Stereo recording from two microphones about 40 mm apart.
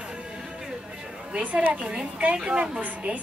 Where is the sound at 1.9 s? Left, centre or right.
Centre.